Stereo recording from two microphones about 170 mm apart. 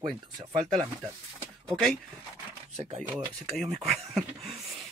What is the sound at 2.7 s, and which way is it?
Speech, 40° right (ahead or behind).